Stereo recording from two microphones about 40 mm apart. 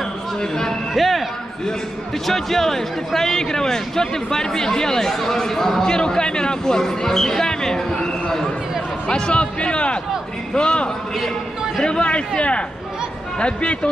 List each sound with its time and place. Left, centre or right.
0.4 s a sound: centre
0.9 s speech: centre
2.2 s speech: centre
9.1 s speech: left